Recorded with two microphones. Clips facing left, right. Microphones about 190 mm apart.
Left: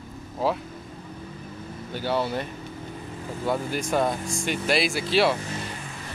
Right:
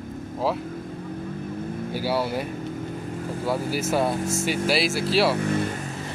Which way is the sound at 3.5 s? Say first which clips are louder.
Right 1 dB; 5° right (ahead or behind).